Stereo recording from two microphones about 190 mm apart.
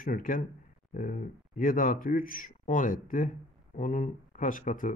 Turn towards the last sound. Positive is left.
turn(degrees=45)  # may be behind; listen again after turning